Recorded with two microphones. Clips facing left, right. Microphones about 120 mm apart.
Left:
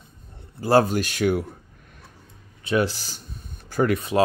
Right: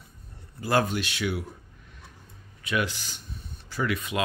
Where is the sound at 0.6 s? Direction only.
35° left (ahead or behind).